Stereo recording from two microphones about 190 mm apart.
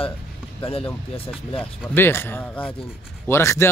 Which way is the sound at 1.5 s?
10° left (ahead or behind).